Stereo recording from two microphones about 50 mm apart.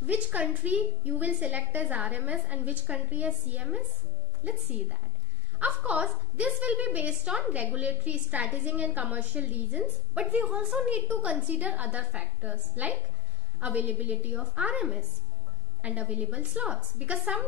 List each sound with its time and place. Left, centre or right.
0.0 s a woman's voice: right